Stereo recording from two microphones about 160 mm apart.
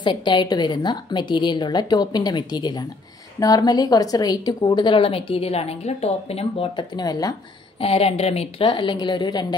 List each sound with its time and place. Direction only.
0.0 s a woman's voice: 30° left (ahead or behind)
7.8 s a woman's voice: 35° left (ahead or behind)